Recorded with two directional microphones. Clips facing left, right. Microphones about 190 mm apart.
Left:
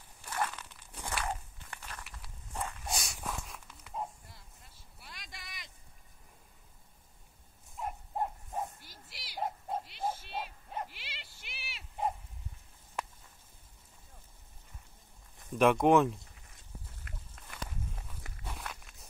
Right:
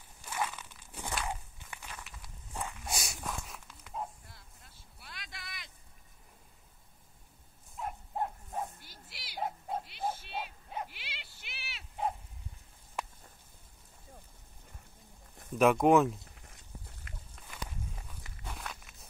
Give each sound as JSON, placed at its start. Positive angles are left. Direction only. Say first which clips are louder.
{"t": 0.2, "sound": "a sound", "louder": "left 1 dB", "side_deg": -10}
{"t": 1.2, "sound": "walk", "louder": "left 1 dB", "side_deg": -10}
{"t": 2.0, "sound": "walk", "louder": "even", "side_deg": 5}
{"t": 2.5, "sound": "dog", "louder": "left 1 dB", "side_deg": -10}
{"t": 7.7, "sound": "livestock", "louder": "even", "side_deg": 0}
{"t": 9.0, "sound": "a sound", "louder": "even", "side_deg": -5}
{"t": 10.3, "sound": "dog", "louder": "even", "side_deg": 0}
{"t": 15.5, "sound": "speech", "louder": "even", "side_deg": -5}
{"t": 17.6, "sound": "walk", "louder": "left 1 dB", "side_deg": 0}